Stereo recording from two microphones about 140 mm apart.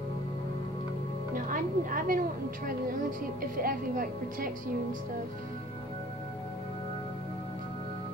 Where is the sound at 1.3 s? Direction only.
80° right.